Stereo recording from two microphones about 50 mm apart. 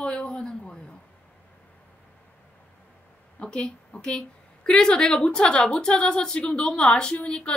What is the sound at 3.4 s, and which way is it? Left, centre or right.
A woman's voice, centre.